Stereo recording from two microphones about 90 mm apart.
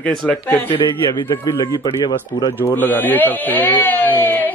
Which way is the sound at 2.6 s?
20° left (ahead or behind).